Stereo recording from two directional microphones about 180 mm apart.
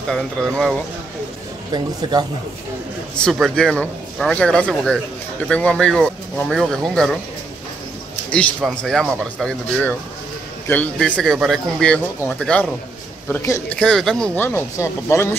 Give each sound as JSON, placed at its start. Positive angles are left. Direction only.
{"t": 1.7, "sound": "speech", "side_deg": -25}
{"t": 3.2, "sound": "a man's voice", "side_deg": 5}
{"t": 8.5, "sound": "a man's voice", "side_deg": 0}
{"t": 13.7, "sound": "speech", "side_deg": 5}